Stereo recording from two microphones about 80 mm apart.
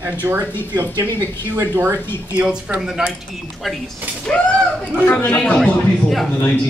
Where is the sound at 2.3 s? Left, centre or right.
Centre.